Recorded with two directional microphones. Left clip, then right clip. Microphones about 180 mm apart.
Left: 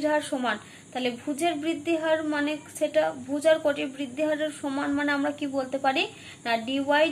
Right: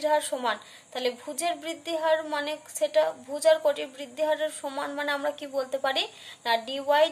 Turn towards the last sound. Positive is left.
turn(degrees=-35)  # may be behind; listen again after turning